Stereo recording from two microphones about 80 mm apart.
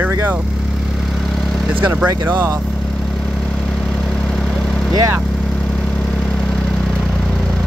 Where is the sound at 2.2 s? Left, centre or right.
Right.